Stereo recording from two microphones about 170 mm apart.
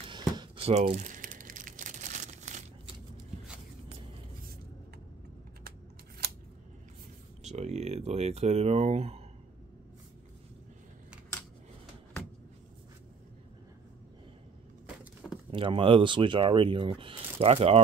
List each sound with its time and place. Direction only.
0.4 s crumpling: 35° right (ahead or behind)
7.4 s speech: 40° right (ahead or behind)
15.5 s speech: 30° right (ahead or behind)